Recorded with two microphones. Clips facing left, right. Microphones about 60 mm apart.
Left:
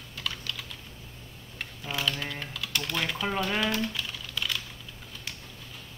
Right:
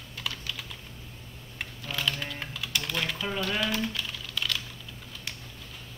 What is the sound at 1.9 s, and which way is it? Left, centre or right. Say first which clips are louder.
Typing: left 1 dB; centre.